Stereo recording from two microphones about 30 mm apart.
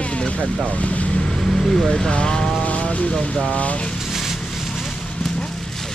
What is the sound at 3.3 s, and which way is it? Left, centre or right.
Speech, left.